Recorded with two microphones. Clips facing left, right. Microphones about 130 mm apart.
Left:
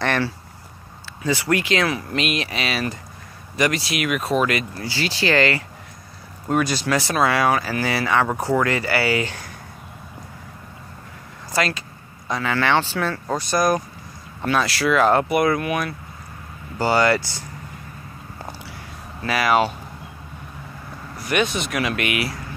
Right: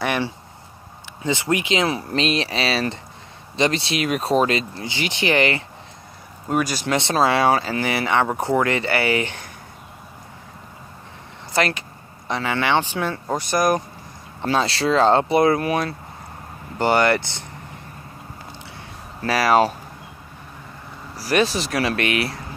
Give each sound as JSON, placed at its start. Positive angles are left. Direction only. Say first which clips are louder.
{"t": 0.0, "sound": "a sound", "louder": "left 1 dB", "side_deg": -10}
{"t": 1.2, "sound": "speech", "louder": "left 1 dB", "side_deg": -20}
{"t": 6.8, "sound": "speech", "louder": "right 1 dB", "side_deg": -25}
{"t": 11.5, "sound": "speech", "louder": "right 1 dB", "side_deg": -25}
{"t": 16.7, "sound": "speech", "louder": "even", "side_deg": -20}
{"t": 19.2, "sound": "speech", "louder": "right 2 dB", "side_deg": -35}
{"t": 21.2, "sound": "speech", "louder": "right 2 dB", "side_deg": -35}